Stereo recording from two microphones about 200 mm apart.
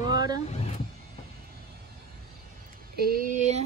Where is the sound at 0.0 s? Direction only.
20° right (ahead or behind).